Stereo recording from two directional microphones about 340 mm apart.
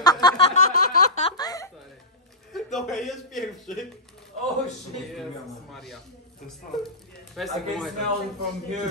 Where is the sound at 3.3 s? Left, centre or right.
Left.